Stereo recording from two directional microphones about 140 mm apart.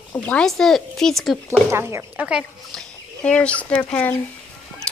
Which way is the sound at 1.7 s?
20° right (ahead or behind).